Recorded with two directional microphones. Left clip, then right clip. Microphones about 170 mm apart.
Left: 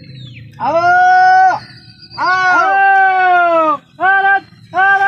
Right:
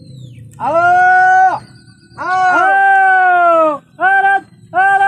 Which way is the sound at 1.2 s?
50° left (ahead or behind).